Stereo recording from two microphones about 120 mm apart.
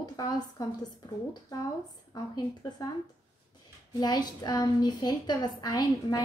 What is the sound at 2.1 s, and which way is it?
Speech, 35° left (ahead or behind).